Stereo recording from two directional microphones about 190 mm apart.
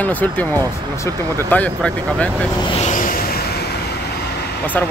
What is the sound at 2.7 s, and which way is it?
Vehicle, 40° left (ahead or behind).